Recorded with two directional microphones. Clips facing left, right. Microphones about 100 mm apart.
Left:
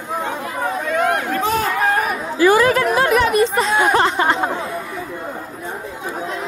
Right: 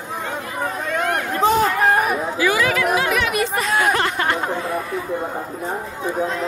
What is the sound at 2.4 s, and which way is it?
Chatter, 40° left (ahead or behind).